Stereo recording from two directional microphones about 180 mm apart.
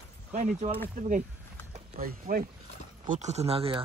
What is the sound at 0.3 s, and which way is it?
Speech, 40° right (ahead or behind).